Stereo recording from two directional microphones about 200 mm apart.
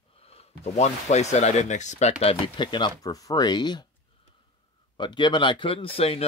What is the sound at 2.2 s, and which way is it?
Speech, 25° left (ahead or behind).